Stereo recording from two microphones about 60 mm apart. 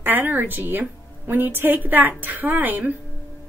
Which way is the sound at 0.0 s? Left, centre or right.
Right.